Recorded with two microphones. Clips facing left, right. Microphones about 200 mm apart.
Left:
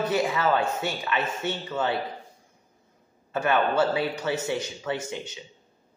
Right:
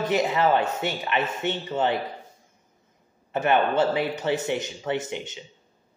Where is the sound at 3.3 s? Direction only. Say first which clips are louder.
Right 2 dB; 20° right (ahead or behind).